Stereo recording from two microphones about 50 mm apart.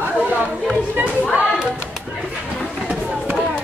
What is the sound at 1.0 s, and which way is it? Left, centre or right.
Speech, right.